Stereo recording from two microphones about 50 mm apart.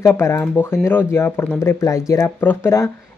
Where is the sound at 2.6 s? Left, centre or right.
Left.